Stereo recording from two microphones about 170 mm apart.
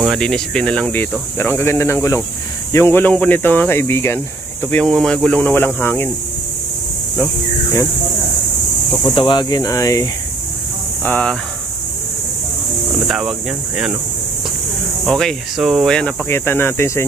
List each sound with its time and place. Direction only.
0.0 s speech: centre (ahead or behind)
9.1 s speech: 30° left (ahead or behind)
11.1 s speech: 10° left (ahead or behind)
15.0 s speech: centre (ahead or behind)